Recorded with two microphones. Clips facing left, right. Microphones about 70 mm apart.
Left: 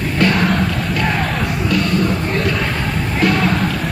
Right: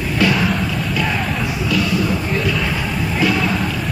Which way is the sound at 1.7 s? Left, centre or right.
Centre.